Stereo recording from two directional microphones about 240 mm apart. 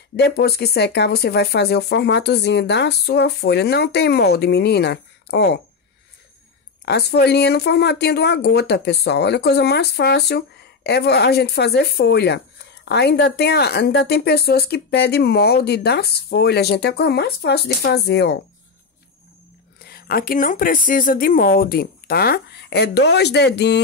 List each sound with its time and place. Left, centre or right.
0.1 s speech: left
6.8 s speech: left
19.9 s speech: left